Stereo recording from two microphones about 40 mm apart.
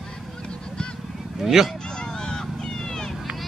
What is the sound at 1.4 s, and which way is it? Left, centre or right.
Speech, centre.